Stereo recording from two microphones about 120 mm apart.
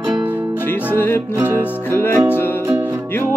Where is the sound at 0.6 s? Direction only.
15° left (ahead or behind).